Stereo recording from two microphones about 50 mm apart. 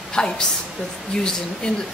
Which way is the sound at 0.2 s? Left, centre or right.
Centre.